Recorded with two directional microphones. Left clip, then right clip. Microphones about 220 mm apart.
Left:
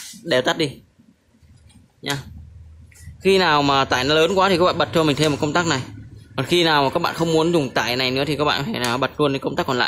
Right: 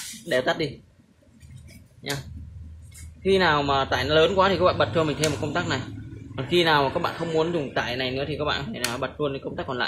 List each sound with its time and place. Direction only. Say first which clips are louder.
0.3 s speech: left 5 dB; 30° left (ahead or behind)
2.0 s a sound: left 5 dB; 25° left (ahead or behind)
3.2 s speech: left 4 dB; 40° left (ahead or behind)